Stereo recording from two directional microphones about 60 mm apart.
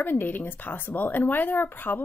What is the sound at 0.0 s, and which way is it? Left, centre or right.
Speech, left.